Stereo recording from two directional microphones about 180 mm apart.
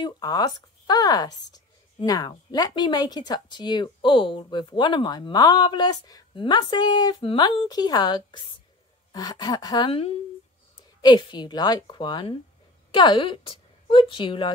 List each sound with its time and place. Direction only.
0.0 s a woman's voice: 20° left (ahead or behind)